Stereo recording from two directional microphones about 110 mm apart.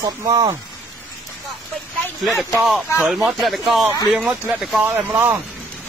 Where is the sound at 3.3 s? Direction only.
Centre (ahead or behind).